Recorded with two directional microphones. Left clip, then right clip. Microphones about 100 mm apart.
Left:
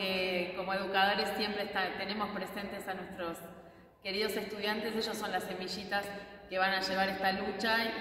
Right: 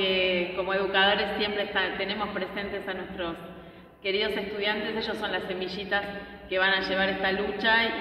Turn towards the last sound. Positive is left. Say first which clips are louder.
# right 8 dB
turn(degrees=35)  # may be behind; listen again after turning